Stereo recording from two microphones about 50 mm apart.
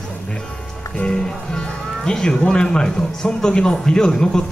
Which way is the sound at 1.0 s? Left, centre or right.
Centre.